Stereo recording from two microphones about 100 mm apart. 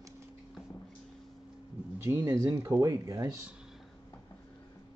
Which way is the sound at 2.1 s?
30° right (ahead or behind).